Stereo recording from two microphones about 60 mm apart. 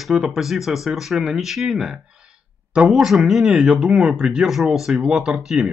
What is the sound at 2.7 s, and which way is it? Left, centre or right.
Speech, centre.